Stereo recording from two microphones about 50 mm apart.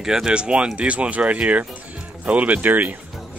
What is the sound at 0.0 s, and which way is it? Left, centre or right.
Speech, centre.